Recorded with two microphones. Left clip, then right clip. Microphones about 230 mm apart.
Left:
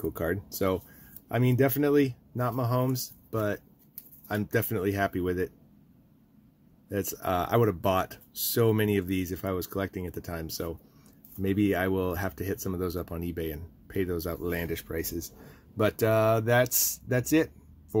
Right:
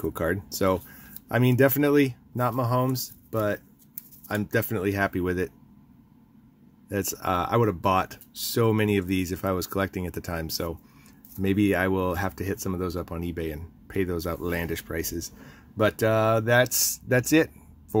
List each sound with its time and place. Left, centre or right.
0.0 s speech: centre
6.9 s speech: centre